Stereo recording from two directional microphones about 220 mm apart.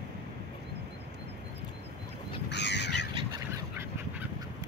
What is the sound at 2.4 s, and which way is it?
Crow, 50° left (ahead or behind).